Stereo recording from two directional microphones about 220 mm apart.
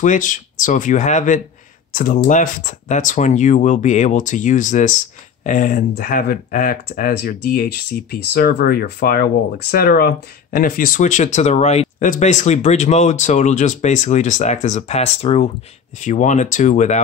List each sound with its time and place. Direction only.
0.0 s speech: 35° left (ahead or behind)